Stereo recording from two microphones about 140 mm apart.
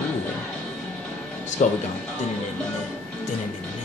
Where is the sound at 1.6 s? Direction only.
60° left (ahead or behind).